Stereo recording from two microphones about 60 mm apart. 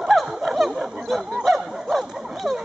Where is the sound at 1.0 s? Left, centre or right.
Centre.